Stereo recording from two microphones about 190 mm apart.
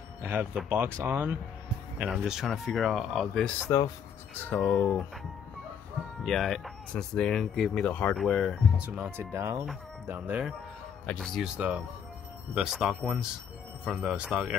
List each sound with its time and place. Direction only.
0.2 s speech: 10° right (ahead or behind)
3.6 s speech: 20° left (ahead or behind)
6.2 s speech: centre (ahead or behind)
11.1 s speech: 5° left (ahead or behind)